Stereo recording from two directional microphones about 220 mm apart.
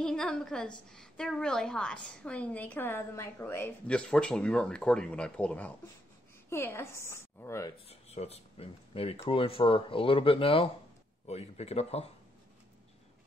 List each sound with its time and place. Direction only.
0.0 s a woman's voice: 5° left (ahead or behind)
7.9 s speech: 30° left (ahead or behind)